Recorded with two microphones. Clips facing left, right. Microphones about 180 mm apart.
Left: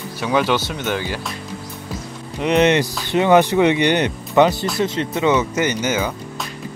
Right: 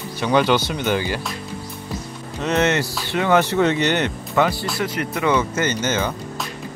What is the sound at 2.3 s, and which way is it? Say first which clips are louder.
Speech: left 4 dB; 15° left (ahead or behind).